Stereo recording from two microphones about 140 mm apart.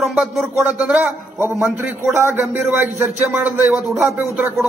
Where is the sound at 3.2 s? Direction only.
5° right (ahead or behind).